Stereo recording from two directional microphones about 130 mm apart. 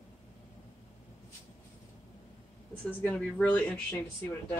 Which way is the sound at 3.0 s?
10° left (ahead or behind).